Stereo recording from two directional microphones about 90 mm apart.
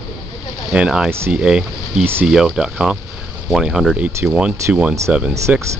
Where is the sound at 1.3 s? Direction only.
10° right (ahead or behind).